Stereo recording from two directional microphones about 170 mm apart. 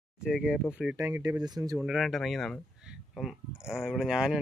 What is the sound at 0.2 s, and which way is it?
Speech, 5° right (ahead or behind).